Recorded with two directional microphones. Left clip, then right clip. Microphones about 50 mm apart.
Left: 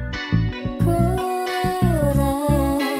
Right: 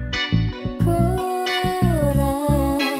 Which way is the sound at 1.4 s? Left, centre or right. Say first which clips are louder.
Right 1 dB; right.